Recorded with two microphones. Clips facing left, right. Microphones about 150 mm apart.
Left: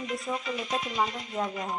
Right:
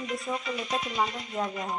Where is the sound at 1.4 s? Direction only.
10° right (ahead or behind).